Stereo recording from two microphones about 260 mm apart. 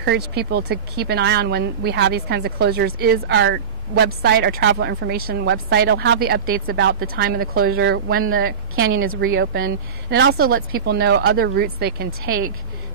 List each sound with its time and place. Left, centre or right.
0.0 s speech: right